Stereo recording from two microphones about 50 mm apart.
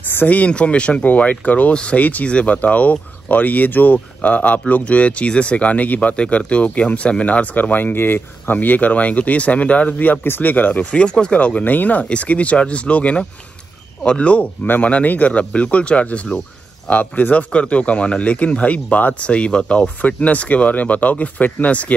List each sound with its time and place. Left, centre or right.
0.0 s a sound: left
0.3 s speech: left
7.5 s speech: left
10.2 s speech: left
10.5 s speech: left